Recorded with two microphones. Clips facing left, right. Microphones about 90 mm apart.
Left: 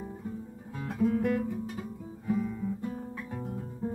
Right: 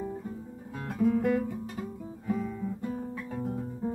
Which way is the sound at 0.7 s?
Centre (ahead or behind).